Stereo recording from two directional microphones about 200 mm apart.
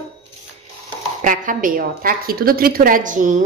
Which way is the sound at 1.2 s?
40° right (ahead or behind).